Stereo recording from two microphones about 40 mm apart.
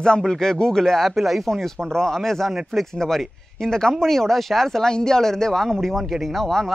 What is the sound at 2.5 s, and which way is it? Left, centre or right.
Speech, centre.